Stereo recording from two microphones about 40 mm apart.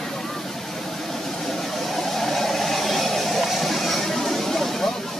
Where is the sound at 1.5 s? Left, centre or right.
Centre.